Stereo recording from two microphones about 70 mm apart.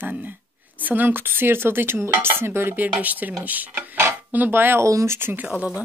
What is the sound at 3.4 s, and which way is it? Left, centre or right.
Dishes, right.